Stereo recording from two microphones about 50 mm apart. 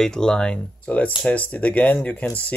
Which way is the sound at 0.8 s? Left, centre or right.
Left.